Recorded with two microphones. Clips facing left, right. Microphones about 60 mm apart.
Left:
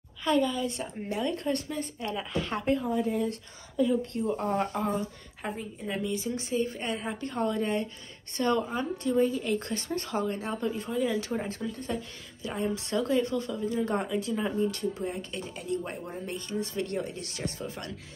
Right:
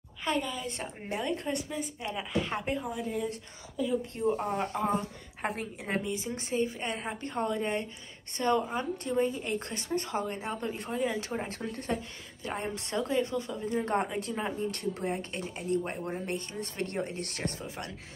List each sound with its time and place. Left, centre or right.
0.4 s a woman's voice: centre
0.7 s a woman's voice: right; by 3.0 s centre
3.0 s a woman's voice: centre
4.7 s a woman's voice: right
5.5 s speech: right
6.0 s a woman's voice: right
11.4 s speech: right
12.4 s a woman's voice: right
14.7 s speech: right
15.0 s speech: right
17.6 s a woman's voice: right